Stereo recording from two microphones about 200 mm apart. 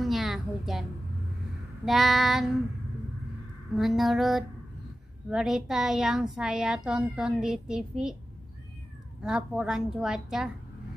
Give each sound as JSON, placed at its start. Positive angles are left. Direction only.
{"t": 0.0, "sound": "a sound", "side_deg": 0}
{"t": 1.9, "sound": "a child's voice", "side_deg": 0}
{"t": 3.7, "sound": "a child's voice", "side_deg": 0}
{"t": 9.2, "sound": "a child's voice", "side_deg": -5}